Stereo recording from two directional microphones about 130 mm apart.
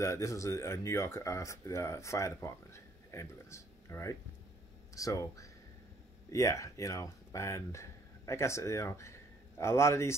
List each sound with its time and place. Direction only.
0.0 s speech: 25° left (ahead or behind)